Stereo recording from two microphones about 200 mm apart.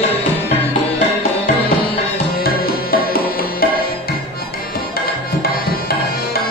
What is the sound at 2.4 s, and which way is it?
Music, 45° left (ahead or behind).